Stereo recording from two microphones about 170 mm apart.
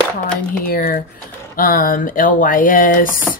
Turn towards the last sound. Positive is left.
turn(degrees=55)  # may be behind; listen again after turning